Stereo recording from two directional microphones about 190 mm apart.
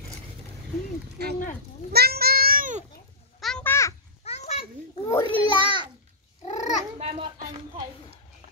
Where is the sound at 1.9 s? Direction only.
55° right (ahead or behind).